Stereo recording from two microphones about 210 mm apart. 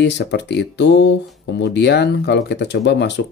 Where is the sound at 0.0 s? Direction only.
55° left (ahead or behind).